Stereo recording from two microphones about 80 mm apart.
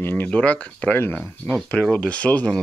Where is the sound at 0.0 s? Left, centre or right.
Left.